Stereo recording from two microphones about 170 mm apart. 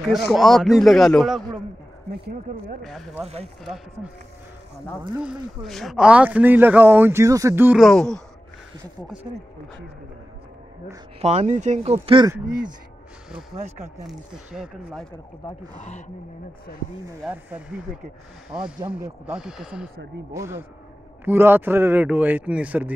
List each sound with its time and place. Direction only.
0.0 s a man's voice: centre (ahead or behind)
2.8 s a man's voice: centre (ahead or behind)
5.2 s speech: centre (ahead or behind)
7.8 s a man's voice: 5° left (ahead or behind)
11.1 s speech: 40° right (ahead or behind)
13.5 s speech: 40° right (ahead or behind)
14.0 s a man's voice: 5° right (ahead or behind)
17.2 s a man's voice: 10° right (ahead or behind)
20.3 s speech: 15° right (ahead or behind)